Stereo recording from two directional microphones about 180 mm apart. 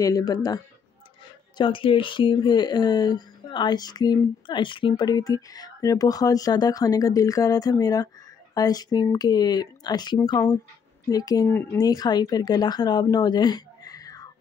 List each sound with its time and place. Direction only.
0.0 s speech: 20° left (ahead or behind)
1.6 s speech: 30° left (ahead or behind)